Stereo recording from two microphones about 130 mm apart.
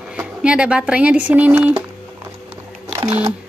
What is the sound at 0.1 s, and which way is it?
Speech, 10° right (ahead or behind).